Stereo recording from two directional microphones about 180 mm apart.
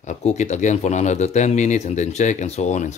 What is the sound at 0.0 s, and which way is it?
Speech, 40° left (ahead or behind).